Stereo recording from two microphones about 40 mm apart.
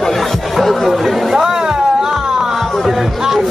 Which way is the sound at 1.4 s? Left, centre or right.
Centre.